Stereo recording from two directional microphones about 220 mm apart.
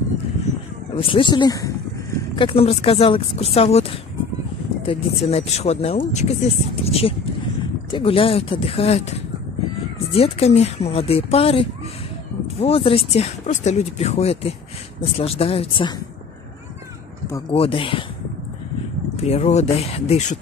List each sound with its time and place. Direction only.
0.9 s speech: 20° left (ahead or behind)
17.5 s speech: 25° left (ahead or behind)
19.1 s speech: 30° left (ahead or behind)